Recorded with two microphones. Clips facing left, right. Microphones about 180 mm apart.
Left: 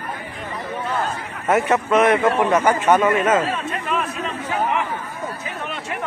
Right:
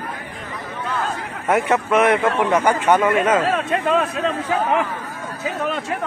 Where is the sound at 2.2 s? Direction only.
15° left (ahead or behind).